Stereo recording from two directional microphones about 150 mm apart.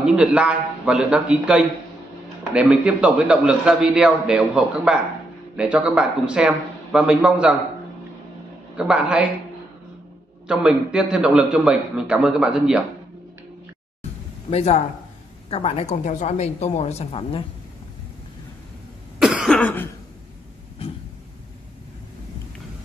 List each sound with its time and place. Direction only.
0.0 s a man's voice: 5° right (ahead or behind)
8.7 s a man's voice: 5° right (ahead or behind)
10.5 s a man's voice: 5° right (ahead or behind)
14.5 s a woman's voice: 45° left (ahead or behind)
19.1 s cough: 5° right (ahead or behind)